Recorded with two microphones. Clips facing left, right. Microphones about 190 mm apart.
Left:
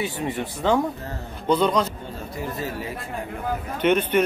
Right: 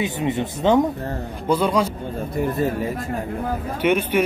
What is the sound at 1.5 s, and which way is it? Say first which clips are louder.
Speech: right 1 dB; 10° right (ahead or behind).